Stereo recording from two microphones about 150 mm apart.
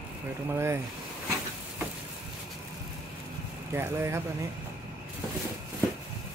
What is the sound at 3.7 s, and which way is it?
Speech, 15° right (ahead or behind).